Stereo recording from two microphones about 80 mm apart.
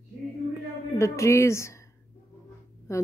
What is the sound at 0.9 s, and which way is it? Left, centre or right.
Speech, left.